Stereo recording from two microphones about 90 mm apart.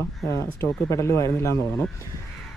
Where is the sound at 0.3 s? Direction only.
35° left (ahead or behind).